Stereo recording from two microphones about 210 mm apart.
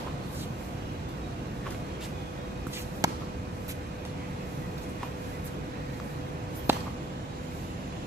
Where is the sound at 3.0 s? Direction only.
15° right (ahead or behind).